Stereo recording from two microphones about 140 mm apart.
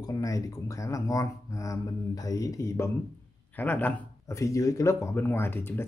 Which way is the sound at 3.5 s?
10° left (ahead or behind).